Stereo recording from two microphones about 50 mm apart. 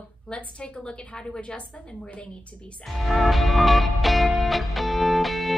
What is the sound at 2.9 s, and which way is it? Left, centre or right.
Music, centre.